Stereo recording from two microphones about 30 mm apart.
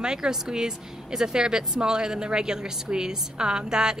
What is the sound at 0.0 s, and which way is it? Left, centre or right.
A woman's voice, right.